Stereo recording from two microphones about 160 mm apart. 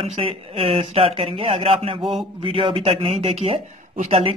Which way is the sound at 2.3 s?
35° right (ahead or behind).